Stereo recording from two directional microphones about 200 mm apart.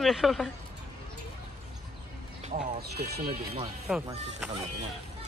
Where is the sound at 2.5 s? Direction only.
40° right (ahead or behind).